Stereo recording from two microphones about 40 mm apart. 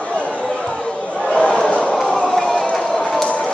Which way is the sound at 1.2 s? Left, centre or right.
Left.